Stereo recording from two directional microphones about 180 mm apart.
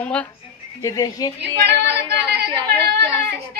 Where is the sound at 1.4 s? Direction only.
70° right (ahead or behind).